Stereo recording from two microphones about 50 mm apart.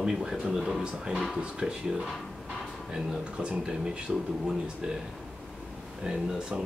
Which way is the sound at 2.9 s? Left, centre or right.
Centre.